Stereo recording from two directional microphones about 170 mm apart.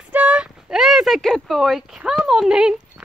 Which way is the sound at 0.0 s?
10° right (ahead or behind).